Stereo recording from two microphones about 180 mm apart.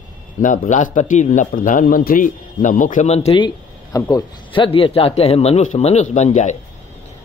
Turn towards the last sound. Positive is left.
turn(degrees=40)  # may be behind; listen again after turning